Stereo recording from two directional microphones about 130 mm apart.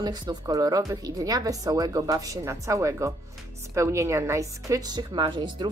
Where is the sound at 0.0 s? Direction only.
30° right (ahead or behind).